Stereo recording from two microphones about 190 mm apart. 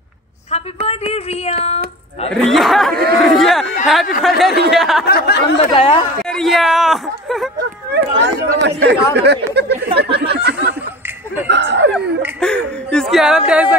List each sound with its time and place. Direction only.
0.8 s speech: 30° left (ahead or behind)
2.4 s speech: centre (ahead or behind)
5.0 s speech: 55° left (ahead or behind)
5.7 s speech: 30° left (ahead or behind)
6.3 s speech: centre (ahead or behind)
7.9 s speech: 60° right (ahead or behind)
10.1 s a sound: 60° right (ahead or behind)
11.4 s speech: 65° right (ahead or behind)
12.4 s speech: 5° left (ahead or behind)